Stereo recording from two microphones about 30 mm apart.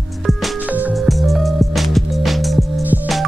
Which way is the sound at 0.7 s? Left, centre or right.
Right.